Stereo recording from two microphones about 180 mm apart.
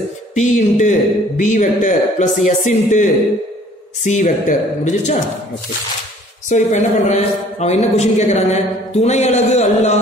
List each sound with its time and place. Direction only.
0.3 s speech: 40° left (ahead or behind)
6.5 s speech: 40° left (ahead or behind)